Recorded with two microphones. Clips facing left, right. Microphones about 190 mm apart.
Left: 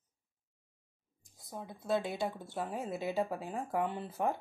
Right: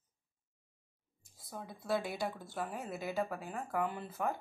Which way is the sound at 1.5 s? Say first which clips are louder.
Left 2 dB; 20° left (ahead or behind).